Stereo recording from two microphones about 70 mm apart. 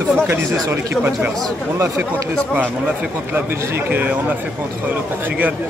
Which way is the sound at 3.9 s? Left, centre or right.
Right.